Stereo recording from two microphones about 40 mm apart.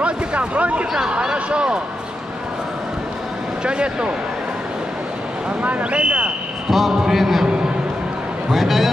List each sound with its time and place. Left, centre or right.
0.0 s a sound: right
1.2 s a sound: right
3.6 s speech: right
5.6 s speech: right
6.7 s a man's voice: centre
8.5 s a man's voice: centre